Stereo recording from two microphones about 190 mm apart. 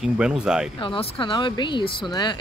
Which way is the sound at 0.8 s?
25° left (ahead or behind).